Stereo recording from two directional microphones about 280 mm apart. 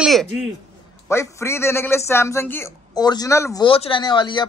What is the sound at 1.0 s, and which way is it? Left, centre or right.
A man's voice, centre.